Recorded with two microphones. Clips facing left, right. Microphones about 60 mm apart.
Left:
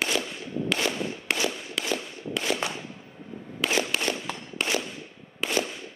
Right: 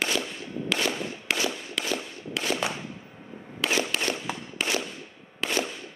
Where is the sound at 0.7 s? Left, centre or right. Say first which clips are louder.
Right 1 dB; centre.